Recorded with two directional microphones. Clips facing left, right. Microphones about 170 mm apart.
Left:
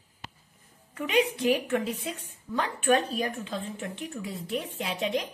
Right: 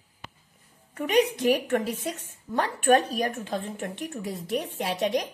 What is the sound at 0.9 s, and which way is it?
A woman's voice, 40° right (ahead or behind).